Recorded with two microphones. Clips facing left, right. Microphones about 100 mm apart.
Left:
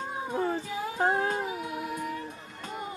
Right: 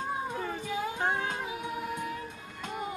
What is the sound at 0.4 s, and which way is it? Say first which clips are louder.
Cat: left 6 dB; 30° left (ahead or behind).